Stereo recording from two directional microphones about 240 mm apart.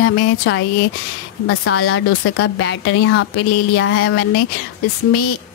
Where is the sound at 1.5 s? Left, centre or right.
Left.